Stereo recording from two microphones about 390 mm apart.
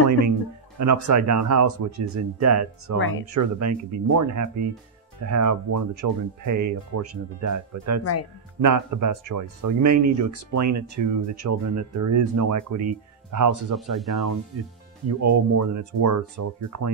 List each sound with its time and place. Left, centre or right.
0.7 s speech: right
3.0 s speech: left
3.3 s speech: right
8.0 s speech: left
8.5 s speech: right
13.7 s speech: centre
14.5 s speech: right